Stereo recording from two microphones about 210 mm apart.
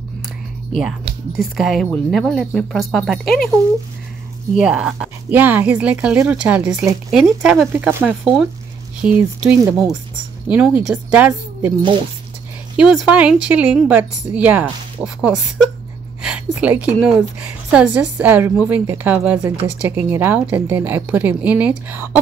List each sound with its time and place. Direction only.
0.7 s speech: centre (ahead or behind)
4.6 s a woman's voice: 5° right (ahead or behind)
12.7 s a woman's voice: 5° right (ahead or behind)
19.4 s speech: 25° right (ahead or behind)
19.7 s a woman's voice: 10° right (ahead or behind)